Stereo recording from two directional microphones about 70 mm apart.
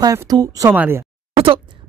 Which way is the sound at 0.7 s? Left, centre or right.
Right.